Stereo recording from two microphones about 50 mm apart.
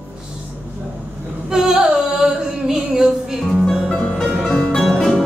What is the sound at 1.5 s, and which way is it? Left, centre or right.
Female singing, centre.